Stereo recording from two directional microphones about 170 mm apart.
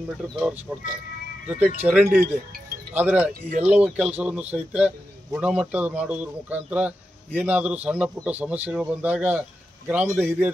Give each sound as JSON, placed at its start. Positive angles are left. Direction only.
{"t": 0.2, "sound": "a man's voice", "side_deg": 0}
{"t": 3.3, "sound": "speech", "side_deg": -55}
{"t": 3.6, "sound": "a man's voice", "side_deg": -10}